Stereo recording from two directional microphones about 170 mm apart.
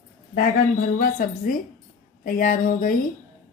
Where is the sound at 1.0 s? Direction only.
55° left (ahead or behind).